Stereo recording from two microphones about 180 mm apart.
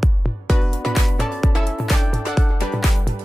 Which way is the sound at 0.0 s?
Centre (ahead or behind).